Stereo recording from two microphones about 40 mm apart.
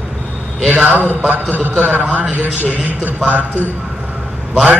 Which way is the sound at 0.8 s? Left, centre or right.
Right.